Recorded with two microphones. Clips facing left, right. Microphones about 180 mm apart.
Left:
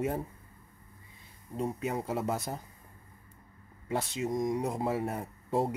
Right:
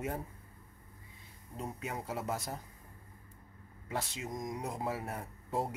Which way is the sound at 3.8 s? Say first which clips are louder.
Left 7 dB; 25° left (ahead or behind).